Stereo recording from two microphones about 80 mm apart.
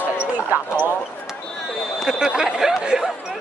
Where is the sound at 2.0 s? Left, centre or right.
Centre.